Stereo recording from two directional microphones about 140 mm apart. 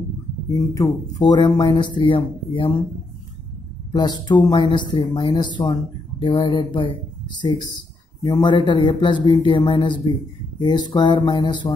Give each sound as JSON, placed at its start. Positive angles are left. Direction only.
{"t": 0.7, "sound": "speech", "side_deg": 30}
{"t": 3.9, "sound": "speech", "side_deg": 30}